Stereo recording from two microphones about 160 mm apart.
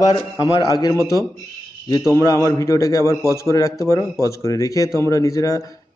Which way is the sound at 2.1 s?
20° left (ahead or behind).